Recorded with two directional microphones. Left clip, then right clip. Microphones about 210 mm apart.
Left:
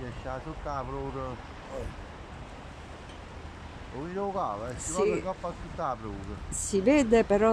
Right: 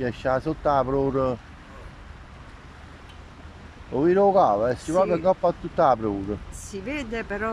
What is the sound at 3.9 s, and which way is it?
Speech, 45° right (ahead or behind).